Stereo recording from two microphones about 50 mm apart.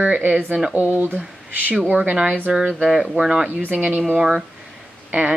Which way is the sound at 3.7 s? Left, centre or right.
Right.